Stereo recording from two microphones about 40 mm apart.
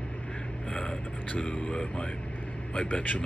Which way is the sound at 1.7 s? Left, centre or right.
Left.